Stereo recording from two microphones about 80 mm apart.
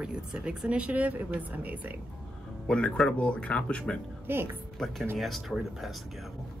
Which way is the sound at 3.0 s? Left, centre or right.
Centre.